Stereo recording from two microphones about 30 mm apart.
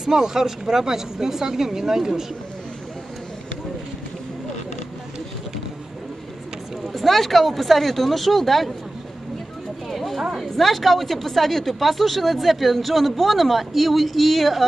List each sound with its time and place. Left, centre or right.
0.0 s speech: centre
6.9 s speech: centre
9.8 s a sound: centre
10.5 s speech: centre